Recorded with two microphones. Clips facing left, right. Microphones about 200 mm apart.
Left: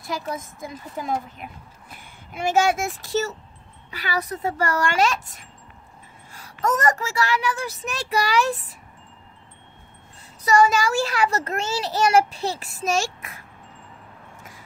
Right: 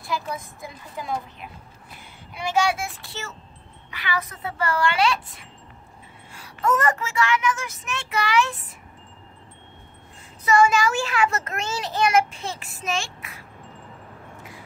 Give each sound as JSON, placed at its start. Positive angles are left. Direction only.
{"t": 0.0, "sound": "speech", "side_deg": 45}
{"t": 6.6, "sound": "a child's voice", "side_deg": 40}
{"t": 10.4, "sound": "a child's voice", "side_deg": 40}